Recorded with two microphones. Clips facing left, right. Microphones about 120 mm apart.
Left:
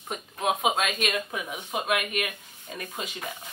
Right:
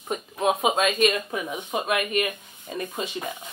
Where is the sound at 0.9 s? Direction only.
5° left (ahead or behind).